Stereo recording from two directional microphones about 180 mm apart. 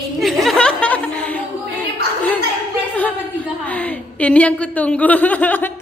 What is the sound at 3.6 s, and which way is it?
A woman's voice, 10° left (ahead or behind).